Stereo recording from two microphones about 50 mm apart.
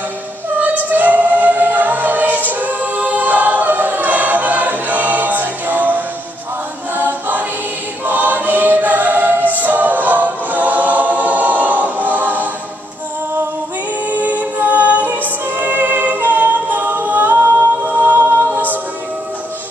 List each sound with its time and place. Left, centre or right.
0.6 s choir: right
14.0 s music: right